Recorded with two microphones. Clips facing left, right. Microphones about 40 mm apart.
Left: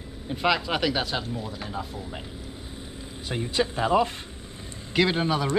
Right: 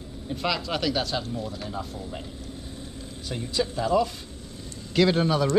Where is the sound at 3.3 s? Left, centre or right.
Left.